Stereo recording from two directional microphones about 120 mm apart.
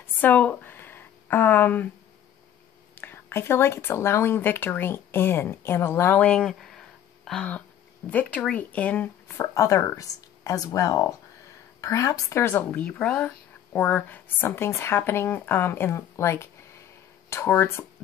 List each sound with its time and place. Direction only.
0.0 s a sound: 15° left (ahead or behind)
3.0 s speech: 20° left (ahead or behind)
9.4 s speech: 25° left (ahead or behind)